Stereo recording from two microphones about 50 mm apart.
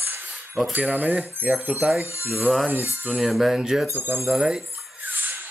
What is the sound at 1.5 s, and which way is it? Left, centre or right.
Speech, right.